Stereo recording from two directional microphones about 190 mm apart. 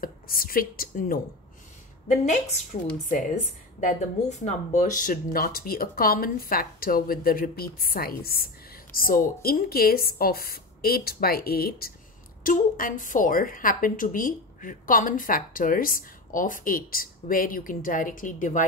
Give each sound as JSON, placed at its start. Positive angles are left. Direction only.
{"t": 0.0, "sound": "a woman's voice", "side_deg": 50}
{"t": 2.0, "sound": "a woman's voice", "side_deg": 40}